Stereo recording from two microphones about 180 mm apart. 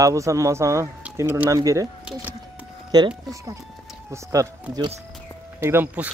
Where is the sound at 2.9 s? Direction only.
20° right (ahead or behind).